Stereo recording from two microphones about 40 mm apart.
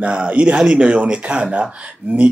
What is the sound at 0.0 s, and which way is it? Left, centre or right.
Speech, right.